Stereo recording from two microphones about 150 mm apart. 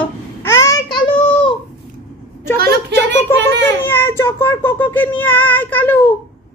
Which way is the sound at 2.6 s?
90° right.